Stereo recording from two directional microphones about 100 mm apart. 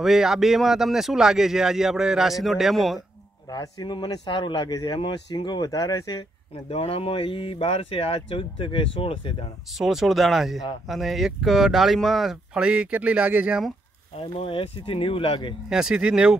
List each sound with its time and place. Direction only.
0.0 s speech: 5° right (ahead or behind)
3.4 s speech: 45° left (ahead or behind)
6.7 s speech: 85° left; by 9.5 s 65° left (ahead or behind)
9.8 s speech: 5° right (ahead or behind)
14.2 s speech: 65° left (ahead or behind)
15.7 s speech: 5° right (ahead or behind)